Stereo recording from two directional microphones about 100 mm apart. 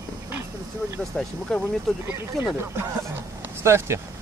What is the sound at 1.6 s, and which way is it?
Speech, 25° right (ahead or behind).